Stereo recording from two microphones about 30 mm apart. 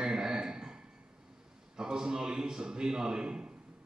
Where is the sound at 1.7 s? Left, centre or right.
Right.